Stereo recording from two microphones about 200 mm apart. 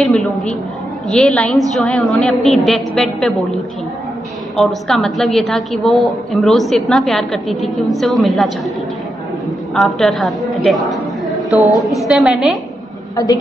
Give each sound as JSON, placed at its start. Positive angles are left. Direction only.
{"t": 0.0, "sound": "a woman's voice", "side_deg": 0}
{"t": 9.8, "sound": "a woman's voice", "side_deg": 0}
{"t": 10.5, "sound": "a sound", "side_deg": 0}
{"t": 12.1, "sound": "a woman's voice", "side_deg": 0}
{"t": 13.1, "sound": "a woman's voice", "side_deg": 20}